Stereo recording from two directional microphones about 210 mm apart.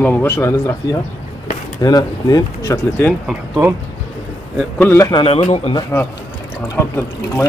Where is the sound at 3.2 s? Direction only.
10° right (ahead or behind).